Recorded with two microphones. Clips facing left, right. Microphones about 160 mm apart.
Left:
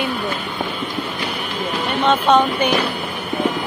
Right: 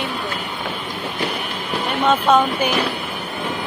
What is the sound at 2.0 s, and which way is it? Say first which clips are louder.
Speech: left 1 dB; 5° right (ahead or behind).